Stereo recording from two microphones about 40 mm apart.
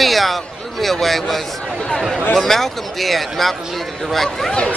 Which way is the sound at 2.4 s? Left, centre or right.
Centre.